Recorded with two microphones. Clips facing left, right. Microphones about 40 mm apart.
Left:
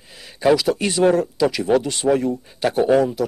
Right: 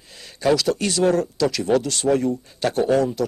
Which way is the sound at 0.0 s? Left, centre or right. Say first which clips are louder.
Left 3 dB; centre.